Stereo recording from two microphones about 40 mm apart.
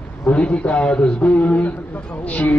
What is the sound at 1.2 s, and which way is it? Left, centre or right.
Speech, left.